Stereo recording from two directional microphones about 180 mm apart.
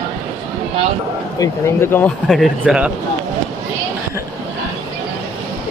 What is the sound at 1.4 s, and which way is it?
Speech, 15° left (ahead or behind).